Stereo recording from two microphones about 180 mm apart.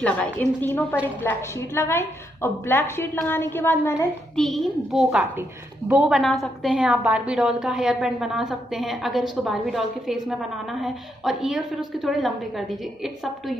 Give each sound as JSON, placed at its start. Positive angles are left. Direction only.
{"t": 0.0, "sound": "a woman's voice", "side_deg": 10}
{"t": 4.4, "sound": "a woman's voice", "side_deg": 0}